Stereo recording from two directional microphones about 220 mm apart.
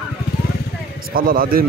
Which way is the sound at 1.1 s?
40° right (ahead or behind).